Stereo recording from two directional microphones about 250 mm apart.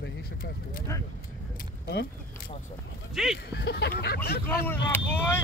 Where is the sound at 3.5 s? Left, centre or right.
Left.